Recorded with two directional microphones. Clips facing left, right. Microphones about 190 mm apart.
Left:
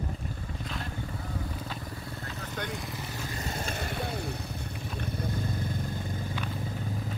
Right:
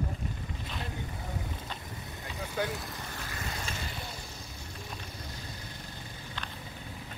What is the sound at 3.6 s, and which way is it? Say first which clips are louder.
Vehicle: left 6 dB; 60° left (ahead or behind).